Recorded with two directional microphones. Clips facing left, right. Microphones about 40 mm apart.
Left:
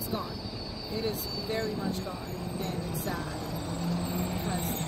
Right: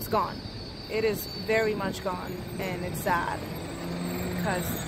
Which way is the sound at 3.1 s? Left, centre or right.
Right.